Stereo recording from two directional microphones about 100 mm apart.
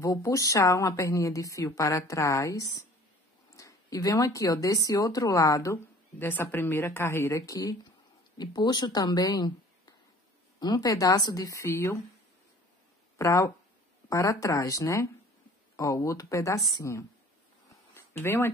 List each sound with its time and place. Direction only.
0.0 s a woman's voice: 35° left (ahead or behind)
6.1 s a woman's voice: 20° left (ahead or behind)
13.2 s a woman's voice: 30° left (ahead or behind)
17.6 s a sound: 25° left (ahead or behind)